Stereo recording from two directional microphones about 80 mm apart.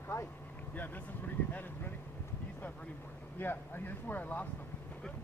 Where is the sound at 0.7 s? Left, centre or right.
Left.